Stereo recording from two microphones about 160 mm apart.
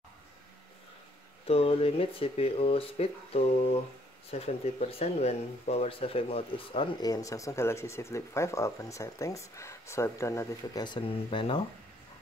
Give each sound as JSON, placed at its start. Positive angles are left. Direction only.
{"t": 1.5, "sound": "speech", "side_deg": 35}
{"t": 4.3, "sound": "speech", "side_deg": 40}
{"t": 7.0, "sound": "speech", "side_deg": 20}